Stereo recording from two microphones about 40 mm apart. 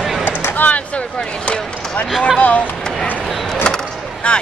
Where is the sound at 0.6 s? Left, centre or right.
Left.